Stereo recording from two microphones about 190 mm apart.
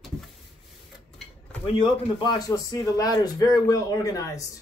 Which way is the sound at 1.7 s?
20° left (ahead or behind).